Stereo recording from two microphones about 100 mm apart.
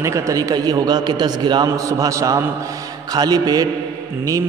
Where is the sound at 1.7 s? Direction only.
35° right (ahead or behind).